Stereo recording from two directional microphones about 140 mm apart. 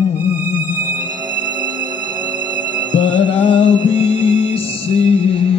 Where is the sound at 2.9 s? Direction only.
40° left (ahead or behind).